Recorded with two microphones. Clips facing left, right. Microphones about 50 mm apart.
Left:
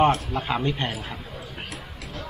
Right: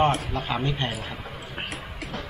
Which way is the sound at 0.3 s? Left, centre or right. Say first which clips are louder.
Left 2 dB; centre.